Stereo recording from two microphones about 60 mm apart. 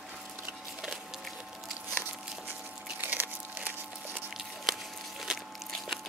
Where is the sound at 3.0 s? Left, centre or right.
Right.